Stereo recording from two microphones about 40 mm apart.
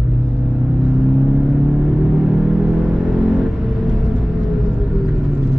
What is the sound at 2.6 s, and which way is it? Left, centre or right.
Vehicle, centre.